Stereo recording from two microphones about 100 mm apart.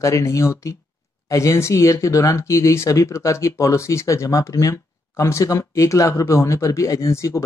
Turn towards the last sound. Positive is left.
turn(degrees=30)  # may be behind; listen again after turning